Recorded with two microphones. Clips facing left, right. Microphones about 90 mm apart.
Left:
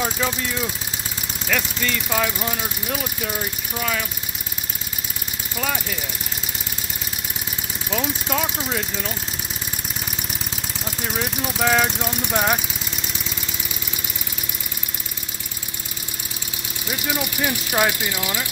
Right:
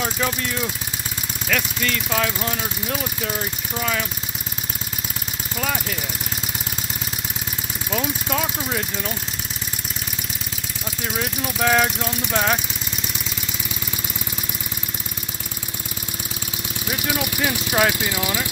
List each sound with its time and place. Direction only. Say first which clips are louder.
0.2 s speech: even; centre (ahead or behind)
5.6 s speech: even; centre (ahead or behind)
7.9 s speech: even; centre (ahead or behind)
11.1 s speech: even; 5° left (ahead or behind)
12.0 s speech: even; 15° left (ahead or behind)
17.1 s speech: even; 5° right (ahead or behind)